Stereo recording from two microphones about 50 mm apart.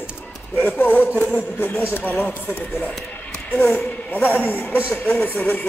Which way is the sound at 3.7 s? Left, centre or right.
Left.